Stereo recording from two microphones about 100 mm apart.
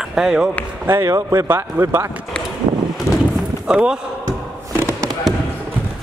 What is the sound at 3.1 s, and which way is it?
Clip-clop, 30° left (ahead or behind).